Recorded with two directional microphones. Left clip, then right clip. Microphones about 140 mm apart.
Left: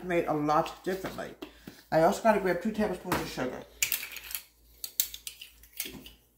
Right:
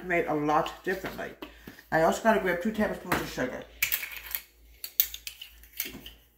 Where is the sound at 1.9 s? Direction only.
40° left (ahead or behind).